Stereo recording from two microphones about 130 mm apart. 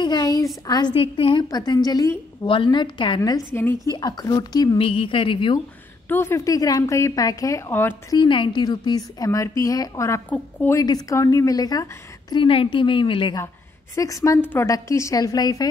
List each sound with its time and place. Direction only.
0.0 s a sound: 30° left (ahead or behind)
0.7 s speech: 30° left (ahead or behind)
0.9 s a woman's voice: 45° left (ahead or behind)
1.5 s a woman's voice: 30° left (ahead or behind)
4.7 s speech: 45° left (ahead or behind)
6.0 s a woman's voice: 20° left (ahead or behind)
8.1 s a woman's voice: 40° left (ahead or behind); by 10.8 s 15° left (ahead or behind)
10.8 s a woman's voice: 30° left (ahead or behind)
12.4 s speech: 40° left (ahead or behind)
13.9 s a woman's voice: 25° left (ahead or behind)